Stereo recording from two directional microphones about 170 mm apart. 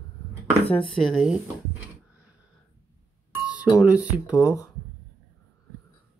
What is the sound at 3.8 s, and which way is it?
Speech, 10° right (ahead or behind).